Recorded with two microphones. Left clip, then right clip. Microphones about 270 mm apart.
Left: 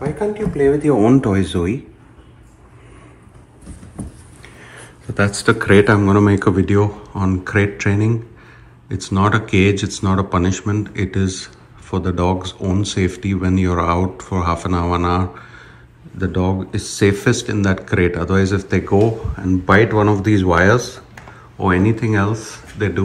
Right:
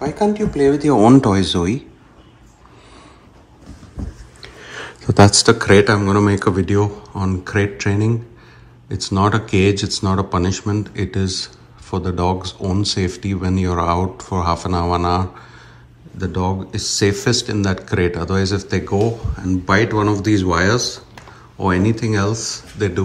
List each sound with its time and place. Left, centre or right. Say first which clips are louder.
0.2 s speech: right 1 dB; centre
4.4 s a sound: right 7 dB; right
5.0 s speech: right 7 dB; right
5.3 s speech: right 2 dB; centre
16.3 s speech: even; centre